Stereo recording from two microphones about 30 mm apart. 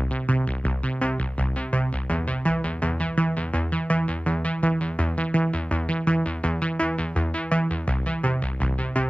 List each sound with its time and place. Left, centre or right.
1.7 s music: left